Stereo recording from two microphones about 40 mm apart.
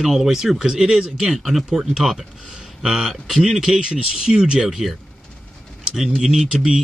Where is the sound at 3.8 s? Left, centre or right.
Right.